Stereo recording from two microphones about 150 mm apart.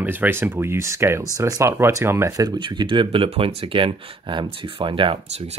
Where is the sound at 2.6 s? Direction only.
35° right (ahead or behind).